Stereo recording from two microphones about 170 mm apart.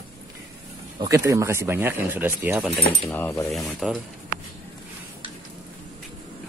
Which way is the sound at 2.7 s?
Centre (ahead or behind).